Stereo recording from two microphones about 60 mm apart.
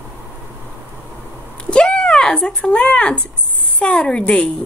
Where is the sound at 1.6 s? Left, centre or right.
Centre.